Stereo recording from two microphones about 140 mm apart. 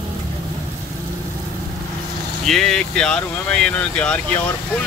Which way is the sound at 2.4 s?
5° left (ahead or behind).